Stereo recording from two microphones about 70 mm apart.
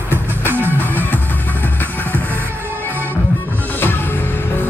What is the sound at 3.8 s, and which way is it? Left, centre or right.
Music, left.